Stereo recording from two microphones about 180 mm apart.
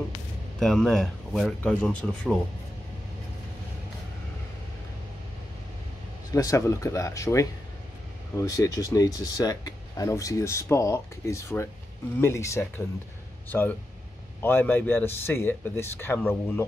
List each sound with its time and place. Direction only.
0.6 s speech: 5° left (ahead or behind)
6.3 s speech: 15° left (ahead or behind)